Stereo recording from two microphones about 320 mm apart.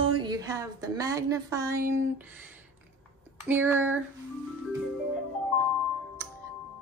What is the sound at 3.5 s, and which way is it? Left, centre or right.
Speech, centre.